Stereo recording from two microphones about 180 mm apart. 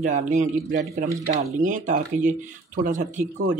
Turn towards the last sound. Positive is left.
turn(degrees=-45)  # may be behind; listen again after turning